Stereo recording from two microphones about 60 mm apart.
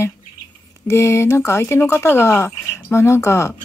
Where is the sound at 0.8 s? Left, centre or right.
Left.